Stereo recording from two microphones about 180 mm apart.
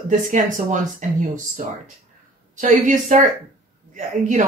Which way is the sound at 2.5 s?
45° right (ahead or behind).